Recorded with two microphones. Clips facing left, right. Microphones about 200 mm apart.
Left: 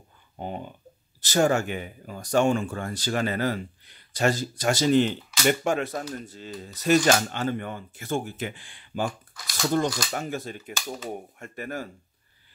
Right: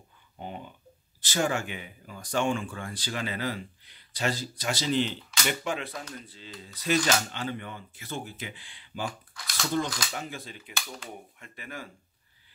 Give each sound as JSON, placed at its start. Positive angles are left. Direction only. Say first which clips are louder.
{"t": 0.4, "sound": "speech", "louder": "left 5 dB", "side_deg": 45}